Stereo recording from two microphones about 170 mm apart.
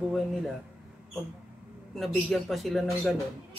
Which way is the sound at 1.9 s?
Centre (ahead or behind).